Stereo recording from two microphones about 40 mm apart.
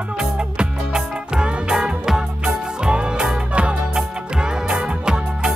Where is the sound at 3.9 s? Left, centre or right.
Centre.